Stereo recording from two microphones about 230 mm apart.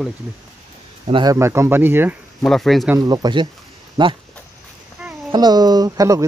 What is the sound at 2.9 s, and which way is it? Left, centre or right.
Speech, centre.